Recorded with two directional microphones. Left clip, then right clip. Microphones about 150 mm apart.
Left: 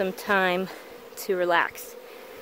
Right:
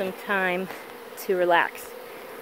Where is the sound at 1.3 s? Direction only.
20° left (ahead or behind).